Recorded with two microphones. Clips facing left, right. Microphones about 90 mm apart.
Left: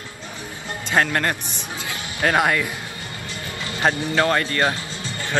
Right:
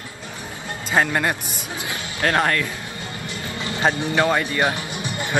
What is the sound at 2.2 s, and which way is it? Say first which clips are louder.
Speech: left 1 dB; 10° left (ahead or behind).